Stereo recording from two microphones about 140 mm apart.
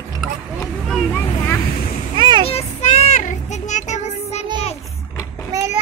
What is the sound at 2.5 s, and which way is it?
Child singing, 45° left (ahead or behind).